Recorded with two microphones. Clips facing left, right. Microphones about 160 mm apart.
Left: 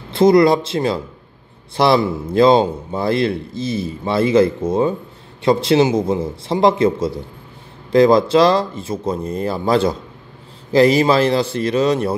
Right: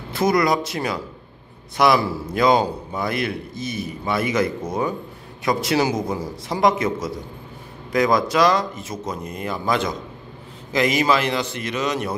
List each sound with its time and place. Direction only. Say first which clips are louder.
0.1 s a man's voice: left 7 dB; 25° left (ahead or behind)